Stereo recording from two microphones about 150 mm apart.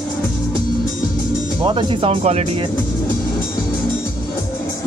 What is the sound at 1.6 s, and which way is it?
Speech, 35° right (ahead or behind).